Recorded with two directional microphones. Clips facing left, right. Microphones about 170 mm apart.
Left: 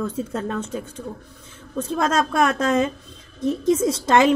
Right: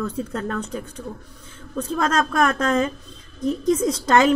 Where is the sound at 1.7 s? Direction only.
25° left (ahead or behind).